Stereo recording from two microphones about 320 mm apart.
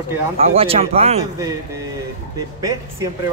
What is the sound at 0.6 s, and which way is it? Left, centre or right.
Speech, centre.